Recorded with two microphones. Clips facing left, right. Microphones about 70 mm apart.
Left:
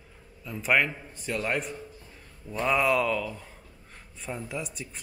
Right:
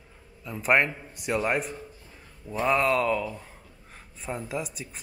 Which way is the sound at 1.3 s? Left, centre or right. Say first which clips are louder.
Right 4 dB; right.